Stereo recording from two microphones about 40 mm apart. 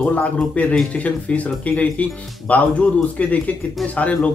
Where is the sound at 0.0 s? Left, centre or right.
Left.